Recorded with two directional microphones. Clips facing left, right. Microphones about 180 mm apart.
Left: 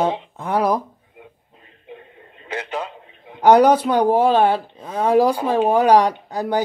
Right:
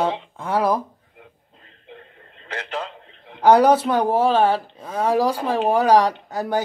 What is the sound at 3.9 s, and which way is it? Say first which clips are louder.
Speech: left 3 dB; 15° left (ahead or behind).